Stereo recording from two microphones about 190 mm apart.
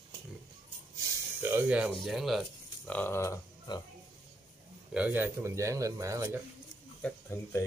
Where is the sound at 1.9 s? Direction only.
Centre (ahead or behind).